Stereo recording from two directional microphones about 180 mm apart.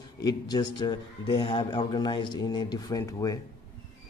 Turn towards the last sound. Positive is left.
turn(degrees=20)  # may be behind; listen again after turning